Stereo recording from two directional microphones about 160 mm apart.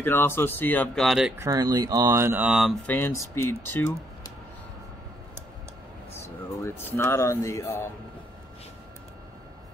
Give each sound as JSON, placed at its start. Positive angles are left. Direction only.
{"t": 0.0, "sound": "speech", "side_deg": 15}
{"t": 1.4, "sound": "speech", "side_deg": -25}
{"t": 2.9, "sound": "speech", "side_deg": 15}
{"t": 6.1, "sound": "speech", "side_deg": 15}